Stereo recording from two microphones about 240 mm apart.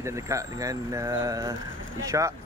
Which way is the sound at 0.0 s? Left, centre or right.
Centre.